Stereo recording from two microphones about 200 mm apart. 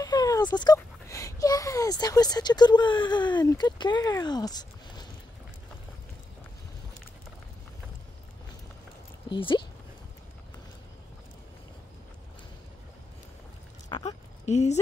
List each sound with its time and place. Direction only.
0.0 s speech: 20° left (ahead or behind)
9.3 s speech: 25° left (ahead or behind)
14.0 s speech: 35° left (ahead or behind)